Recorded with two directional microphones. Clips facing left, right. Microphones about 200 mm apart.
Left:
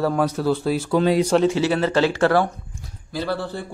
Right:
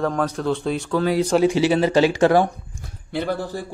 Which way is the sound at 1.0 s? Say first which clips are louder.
Left 2 dB; 20° left (ahead or behind).